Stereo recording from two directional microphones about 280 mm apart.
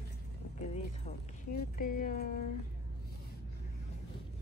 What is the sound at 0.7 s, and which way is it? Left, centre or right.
Speech, left.